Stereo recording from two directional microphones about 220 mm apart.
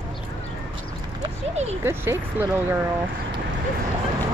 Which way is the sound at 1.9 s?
10° right (ahead or behind).